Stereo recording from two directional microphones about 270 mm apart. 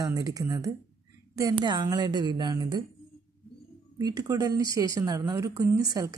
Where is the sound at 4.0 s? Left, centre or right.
Centre.